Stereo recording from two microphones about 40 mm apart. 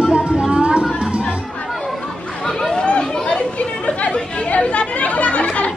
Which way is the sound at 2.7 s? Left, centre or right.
Left.